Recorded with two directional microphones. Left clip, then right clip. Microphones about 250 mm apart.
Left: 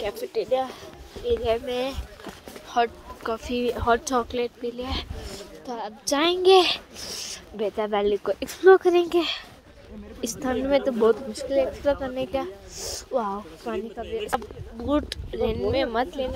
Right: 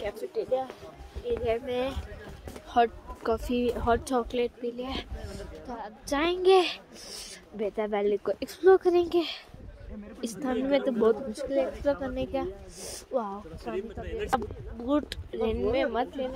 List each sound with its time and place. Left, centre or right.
0.0 s a woman's voice: left
2.7 s speech: right; by 5.0 s centre
5.7 s a woman's voice: left; by 13.4 s centre
14.9 s a woman's voice: centre